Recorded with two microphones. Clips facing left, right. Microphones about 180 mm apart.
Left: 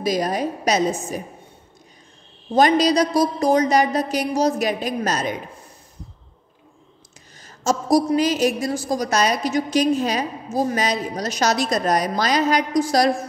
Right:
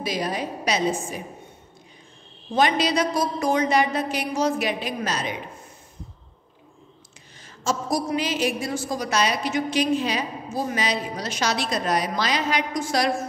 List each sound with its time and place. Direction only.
0.0 s a woman's voice: 45° left (ahead or behind)
2.5 s a woman's voice: 40° left (ahead or behind)
7.4 s a woman's voice: 40° left (ahead or behind)